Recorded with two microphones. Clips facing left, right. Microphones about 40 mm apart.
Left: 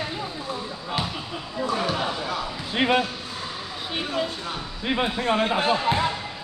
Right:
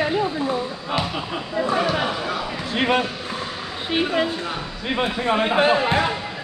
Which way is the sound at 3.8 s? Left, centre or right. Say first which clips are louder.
Right 7 dB; right.